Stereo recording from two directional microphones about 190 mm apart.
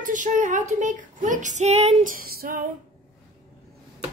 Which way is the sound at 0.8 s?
40° right (ahead or behind).